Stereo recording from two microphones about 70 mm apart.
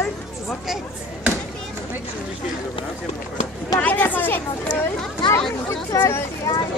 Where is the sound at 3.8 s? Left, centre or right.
Left.